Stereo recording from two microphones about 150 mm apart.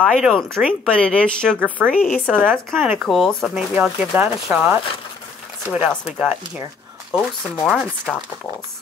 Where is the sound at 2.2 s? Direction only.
10° right (ahead or behind).